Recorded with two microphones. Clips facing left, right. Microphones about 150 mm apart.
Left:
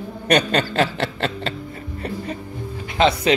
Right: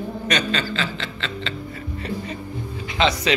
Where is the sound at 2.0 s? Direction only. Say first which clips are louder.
Left 1 dB; 55° left (ahead or behind).